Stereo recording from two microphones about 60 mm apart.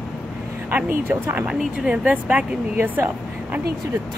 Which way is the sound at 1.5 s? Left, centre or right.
Centre.